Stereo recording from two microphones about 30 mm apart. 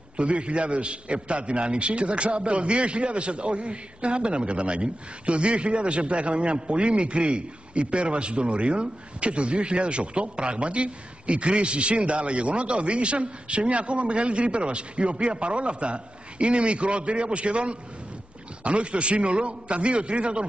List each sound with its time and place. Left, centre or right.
0.2 s a man's voice: right